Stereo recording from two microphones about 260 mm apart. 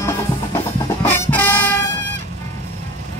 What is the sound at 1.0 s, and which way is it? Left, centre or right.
Music, centre.